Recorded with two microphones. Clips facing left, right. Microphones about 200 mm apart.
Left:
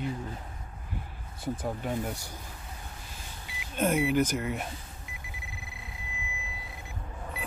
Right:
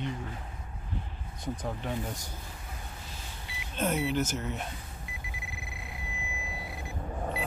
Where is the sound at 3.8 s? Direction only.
10° left (ahead or behind).